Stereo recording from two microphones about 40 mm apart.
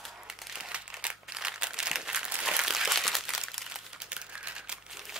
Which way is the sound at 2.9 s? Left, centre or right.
Centre.